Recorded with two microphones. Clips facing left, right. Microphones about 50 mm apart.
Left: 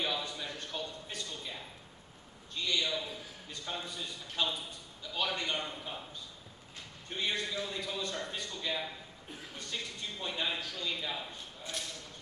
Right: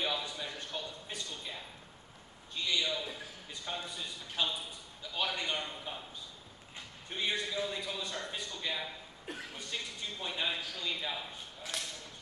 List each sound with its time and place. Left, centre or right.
0.0 s a sound: centre
2.5 s a man's voice: centre
7.1 s a man's voice: centre
10.2 s a man's voice: centre
11.7 s speech: right